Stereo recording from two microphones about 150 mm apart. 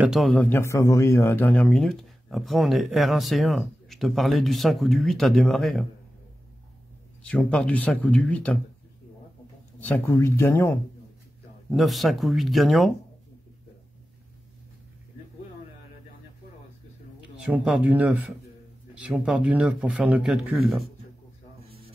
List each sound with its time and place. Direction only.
0.0 s speech: centre (ahead or behind)
0.4 s speech: 15° left (ahead or behind)
7.2 s speech: 5° left (ahead or behind)
9.8 s speech: 10° left (ahead or behind)
11.7 s speech: centre (ahead or behind)
17.4 s speech: 5° right (ahead or behind)